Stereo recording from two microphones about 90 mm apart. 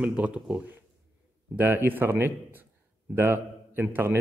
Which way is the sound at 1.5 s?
25° right (ahead or behind).